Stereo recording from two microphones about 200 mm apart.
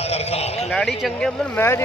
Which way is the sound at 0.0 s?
30° left (ahead or behind).